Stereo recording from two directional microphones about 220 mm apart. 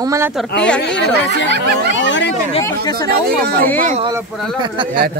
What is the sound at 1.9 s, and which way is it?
Speech, 55° left (ahead or behind).